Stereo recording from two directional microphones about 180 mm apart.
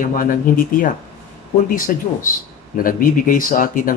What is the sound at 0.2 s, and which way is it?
Speech, 50° left (ahead or behind).